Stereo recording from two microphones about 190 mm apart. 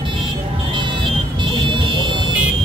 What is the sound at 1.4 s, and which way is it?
Vehicle, 25° right (ahead or behind).